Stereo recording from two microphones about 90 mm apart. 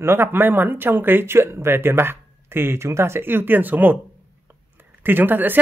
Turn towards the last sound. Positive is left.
turn(degrees=-20)  # may be behind; listen again after turning